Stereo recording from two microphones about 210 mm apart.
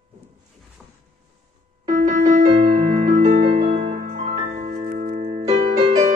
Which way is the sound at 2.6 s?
45° right (ahead or behind).